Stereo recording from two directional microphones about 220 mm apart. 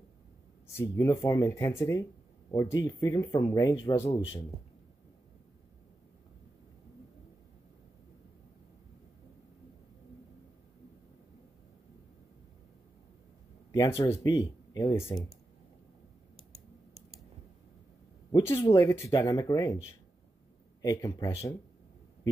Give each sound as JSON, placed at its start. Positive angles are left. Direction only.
{"t": 0.7, "sound": "speech", "side_deg": 15}
{"t": 13.7, "sound": "a sound", "side_deg": 10}
{"t": 14.0, "sound": "speech", "side_deg": 15}
{"t": 18.3, "sound": "speech", "side_deg": 10}
{"t": 20.8, "sound": "speech", "side_deg": 15}